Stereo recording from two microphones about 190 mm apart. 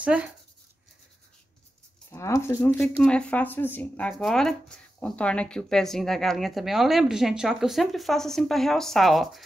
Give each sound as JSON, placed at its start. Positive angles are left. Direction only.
{"t": 0.0, "sound": "speech", "side_deg": -5}
{"t": 2.0, "sound": "speech", "side_deg": 15}